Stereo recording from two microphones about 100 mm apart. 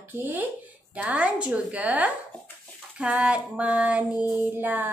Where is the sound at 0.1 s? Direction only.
15° right (ahead or behind).